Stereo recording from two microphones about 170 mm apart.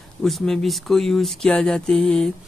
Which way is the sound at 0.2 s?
5° left (ahead or behind).